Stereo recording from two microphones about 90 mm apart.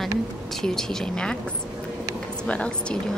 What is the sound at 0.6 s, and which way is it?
Speech, 5° left (ahead or behind).